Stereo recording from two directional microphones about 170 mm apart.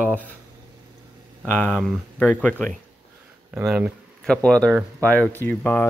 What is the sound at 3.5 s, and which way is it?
Speech, 5° right (ahead or behind).